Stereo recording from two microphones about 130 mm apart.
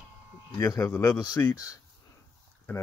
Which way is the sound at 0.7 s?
25° left (ahead or behind).